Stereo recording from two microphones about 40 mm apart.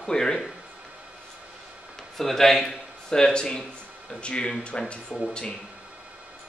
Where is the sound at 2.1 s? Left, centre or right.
Centre.